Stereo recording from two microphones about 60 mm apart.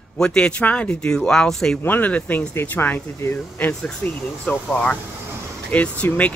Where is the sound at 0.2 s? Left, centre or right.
Centre.